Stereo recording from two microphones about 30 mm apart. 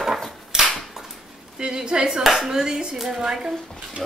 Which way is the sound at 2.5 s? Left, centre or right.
Right.